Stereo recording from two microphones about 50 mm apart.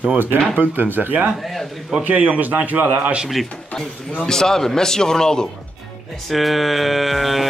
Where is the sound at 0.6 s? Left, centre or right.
Right.